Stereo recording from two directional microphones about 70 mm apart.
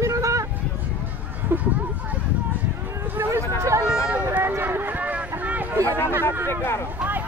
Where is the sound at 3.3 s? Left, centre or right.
Right.